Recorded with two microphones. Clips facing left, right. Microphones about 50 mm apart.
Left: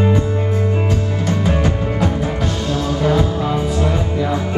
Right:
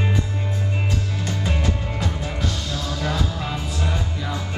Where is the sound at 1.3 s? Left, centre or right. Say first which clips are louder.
Left 8 dB; left.